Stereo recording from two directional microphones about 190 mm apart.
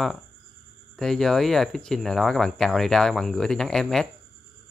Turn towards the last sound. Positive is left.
turn(degrees=0)  # may be behind; listen again after turning